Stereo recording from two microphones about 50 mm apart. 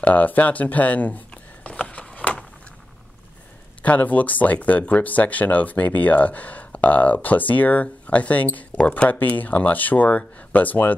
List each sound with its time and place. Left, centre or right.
0.0 s speech: left
2.1 s a sound: left
3.8 s speech: left